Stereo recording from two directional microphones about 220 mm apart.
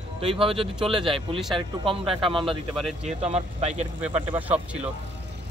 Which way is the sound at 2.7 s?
Centre (ahead or behind).